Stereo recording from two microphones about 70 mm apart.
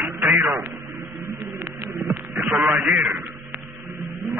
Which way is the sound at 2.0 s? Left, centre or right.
Right.